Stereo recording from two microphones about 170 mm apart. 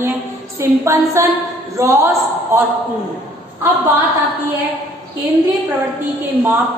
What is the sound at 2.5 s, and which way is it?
Speech, 15° right (ahead or behind).